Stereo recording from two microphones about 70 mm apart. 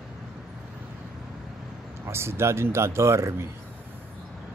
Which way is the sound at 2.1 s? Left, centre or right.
Right.